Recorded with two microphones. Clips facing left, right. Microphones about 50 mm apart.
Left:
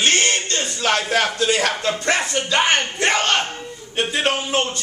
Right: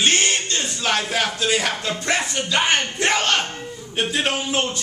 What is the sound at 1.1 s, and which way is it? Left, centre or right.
A man's voice, left.